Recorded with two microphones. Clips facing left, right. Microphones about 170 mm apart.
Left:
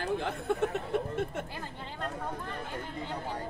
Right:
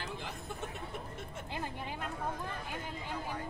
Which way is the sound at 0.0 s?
70° left (ahead or behind).